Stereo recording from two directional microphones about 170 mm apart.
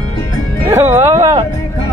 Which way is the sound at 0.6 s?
15° right (ahead or behind).